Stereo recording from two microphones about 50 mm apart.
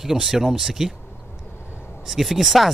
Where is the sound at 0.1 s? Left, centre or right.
Centre.